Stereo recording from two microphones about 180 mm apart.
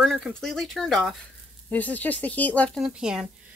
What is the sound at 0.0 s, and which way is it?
Speech, centre (ahead or behind).